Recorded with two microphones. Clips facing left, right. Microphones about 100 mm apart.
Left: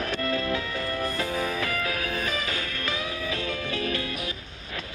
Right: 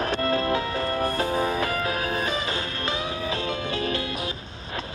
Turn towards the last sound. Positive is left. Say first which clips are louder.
# right 4 dB
turn(degrees=-30)  # may be behind; listen again after turning